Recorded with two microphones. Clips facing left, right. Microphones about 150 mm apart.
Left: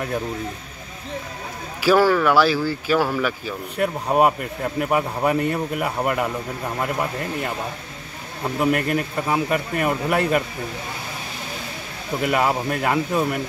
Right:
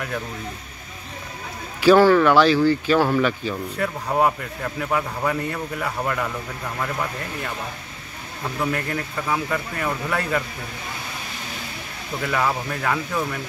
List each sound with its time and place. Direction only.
1.8 s speech: 5° left (ahead or behind)
12.2 s speech: 20° left (ahead or behind)